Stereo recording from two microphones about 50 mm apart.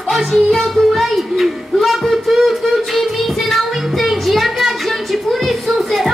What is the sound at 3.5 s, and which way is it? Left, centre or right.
Child singing, centre.